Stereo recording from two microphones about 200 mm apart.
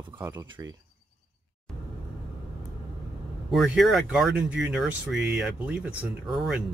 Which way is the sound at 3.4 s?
Centre (ahead or behind).